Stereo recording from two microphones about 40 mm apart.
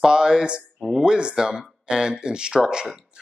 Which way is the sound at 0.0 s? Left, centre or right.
Centre.